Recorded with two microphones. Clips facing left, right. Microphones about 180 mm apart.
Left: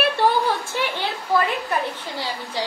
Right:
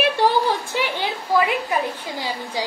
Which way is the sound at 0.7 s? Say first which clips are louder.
Right 1 dB; 15° right (ahead or behind).